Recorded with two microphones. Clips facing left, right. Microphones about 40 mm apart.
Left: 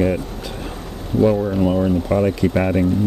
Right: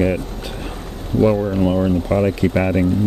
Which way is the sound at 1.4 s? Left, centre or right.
Centre.